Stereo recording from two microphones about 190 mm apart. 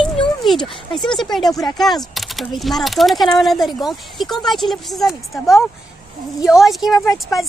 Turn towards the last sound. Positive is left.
turn(degrees=0)  # may be behind; listen again after turning